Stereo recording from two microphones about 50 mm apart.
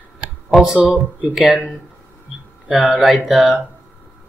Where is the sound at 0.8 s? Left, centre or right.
Right.